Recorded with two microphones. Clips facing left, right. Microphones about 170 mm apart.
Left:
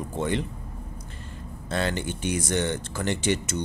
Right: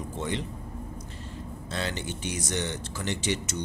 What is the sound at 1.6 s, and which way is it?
Speech, 55° left (ahead or behind).